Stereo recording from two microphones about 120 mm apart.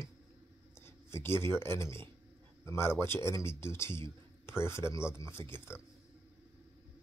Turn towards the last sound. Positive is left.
turn(degrees=20)  # may be behind; listen again after turning